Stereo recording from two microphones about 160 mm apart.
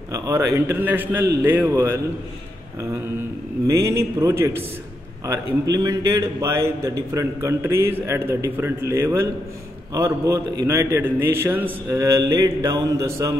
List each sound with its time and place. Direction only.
0.1 s a man's voice: 20° right (ahead or behind)
3.6 s a man's voice: 20° right (ahead or behind)